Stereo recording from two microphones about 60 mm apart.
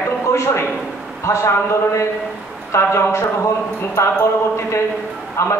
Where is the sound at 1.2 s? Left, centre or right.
Left.